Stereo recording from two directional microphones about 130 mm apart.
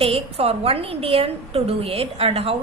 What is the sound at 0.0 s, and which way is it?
A woman's voice, 50° right (ahead or behind).